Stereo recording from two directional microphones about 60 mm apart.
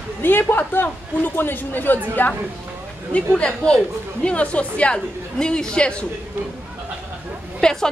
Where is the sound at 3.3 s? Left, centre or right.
Centre.